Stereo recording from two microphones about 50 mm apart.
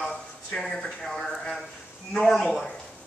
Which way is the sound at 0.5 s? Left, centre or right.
Centre.